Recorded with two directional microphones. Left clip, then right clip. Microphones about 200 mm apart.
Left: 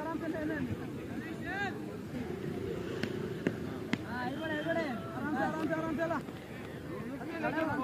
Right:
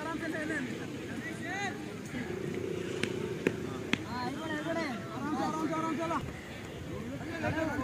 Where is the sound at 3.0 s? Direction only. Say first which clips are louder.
Right 3 dB; 40° left (ahead or behind).